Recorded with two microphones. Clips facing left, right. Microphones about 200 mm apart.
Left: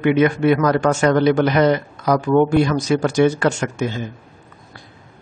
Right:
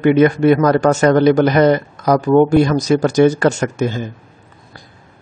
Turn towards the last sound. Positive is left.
turn(degrees=-40)  # may be behind; listen again after turning